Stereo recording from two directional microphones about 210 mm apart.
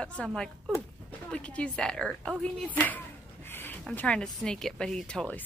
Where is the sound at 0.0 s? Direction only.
5° left (ahead or behind).